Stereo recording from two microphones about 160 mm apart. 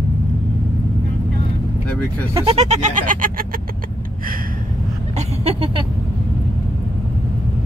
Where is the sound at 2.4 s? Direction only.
45° right (ahead or behind).